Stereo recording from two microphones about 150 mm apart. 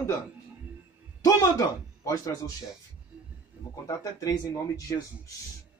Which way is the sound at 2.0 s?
25° left (ahead or behind).